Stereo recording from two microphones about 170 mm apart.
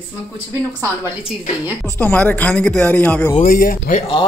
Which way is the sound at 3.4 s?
55° left (ahead or behind).